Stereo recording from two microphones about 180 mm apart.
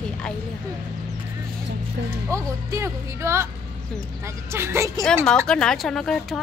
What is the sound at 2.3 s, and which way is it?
Speech, 15° right (ahead or behind).